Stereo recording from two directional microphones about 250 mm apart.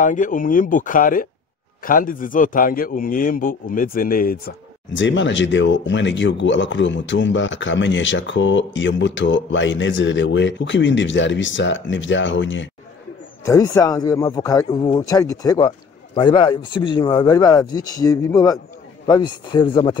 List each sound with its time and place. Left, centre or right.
0.0 s a man's voice: left
13.5 s speech: centre